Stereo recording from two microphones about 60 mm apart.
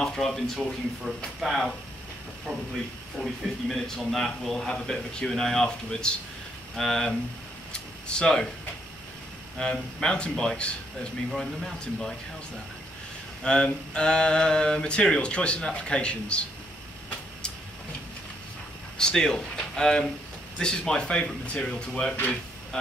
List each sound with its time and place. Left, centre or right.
0.0 s speech: centre
3.2 s speech: centre
7.7 s a sound: centre
9.6 s speech: centre
13.4 s speech: centre
18.9 s speech: centre